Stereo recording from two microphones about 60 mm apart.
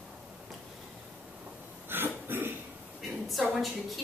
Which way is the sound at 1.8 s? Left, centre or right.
Right.